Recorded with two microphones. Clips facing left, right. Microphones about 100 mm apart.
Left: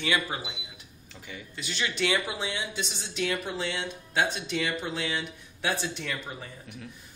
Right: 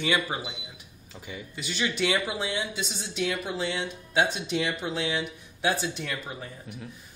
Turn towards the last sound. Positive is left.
turn(degrees=-5)  # may be behind; listen again after turning